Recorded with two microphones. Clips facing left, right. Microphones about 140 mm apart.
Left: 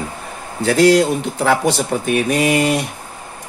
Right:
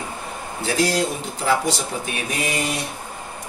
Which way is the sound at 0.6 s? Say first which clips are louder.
Left 9 dB; 65° left (ahead or behind).